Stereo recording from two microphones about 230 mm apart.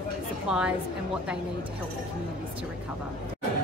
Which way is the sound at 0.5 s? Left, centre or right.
Centre.